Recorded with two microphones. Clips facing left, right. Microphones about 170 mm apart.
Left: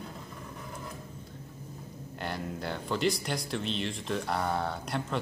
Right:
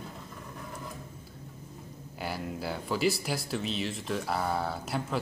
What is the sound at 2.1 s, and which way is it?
Speech, 5° right (ahead or behind).